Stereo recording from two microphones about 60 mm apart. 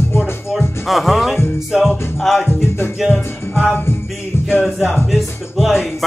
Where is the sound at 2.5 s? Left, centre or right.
Left.